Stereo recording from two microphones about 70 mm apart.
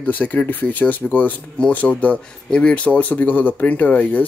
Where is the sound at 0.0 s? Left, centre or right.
Left.